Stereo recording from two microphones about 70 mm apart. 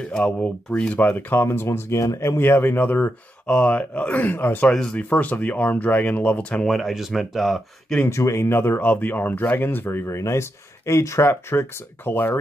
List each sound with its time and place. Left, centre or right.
0.1 s speech: centre
4.6 s speech: centre
4.9 s speech: left
6.6 s speech: centre
8.1 s speech: left